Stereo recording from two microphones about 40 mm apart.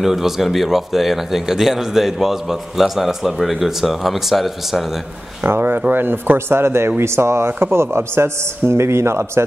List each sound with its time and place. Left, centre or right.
0.0 s a man's voice: centre
5.4 s a man's voice: right